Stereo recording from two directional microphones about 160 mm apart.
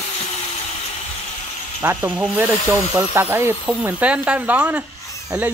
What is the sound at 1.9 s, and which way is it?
Speech, centre (ahead or behind).